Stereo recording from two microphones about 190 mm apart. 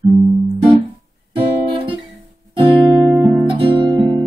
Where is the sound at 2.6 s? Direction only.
25° right (ahead or behind).